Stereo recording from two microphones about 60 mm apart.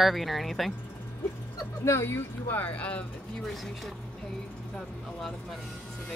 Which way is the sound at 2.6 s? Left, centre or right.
Left.